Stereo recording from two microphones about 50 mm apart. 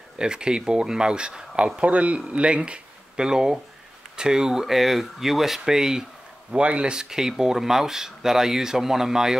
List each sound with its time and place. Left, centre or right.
0.2 s speech: centre
1.8 s a man's voice: right; by 6.0 s centre
6.5 s speech: right